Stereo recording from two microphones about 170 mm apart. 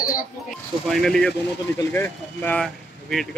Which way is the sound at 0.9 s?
5° left (ahead or behind).